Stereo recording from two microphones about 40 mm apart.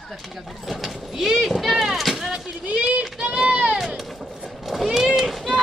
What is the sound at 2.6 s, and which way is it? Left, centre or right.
Speech, right.